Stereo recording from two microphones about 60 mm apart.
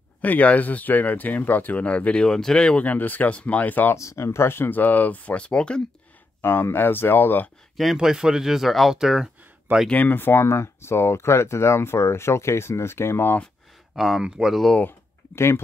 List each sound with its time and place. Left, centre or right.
0.2 s speech: left
2.9 s speech: left
3.9 s speech: left; by 5.8 s centre
6.4 s speech: left
7.7 s speech: centre
9.9 s speech: left
13.9 s speech: centre
15.3 s speech: left